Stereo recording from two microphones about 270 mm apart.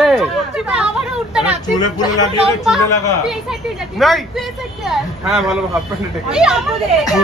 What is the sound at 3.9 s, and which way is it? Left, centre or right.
Speech, centre.